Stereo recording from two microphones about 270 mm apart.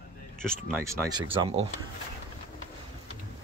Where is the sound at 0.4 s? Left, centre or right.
Centre.